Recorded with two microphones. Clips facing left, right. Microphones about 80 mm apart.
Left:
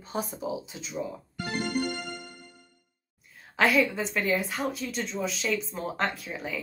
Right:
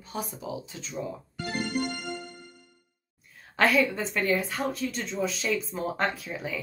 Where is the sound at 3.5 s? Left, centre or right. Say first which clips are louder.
Even; centre.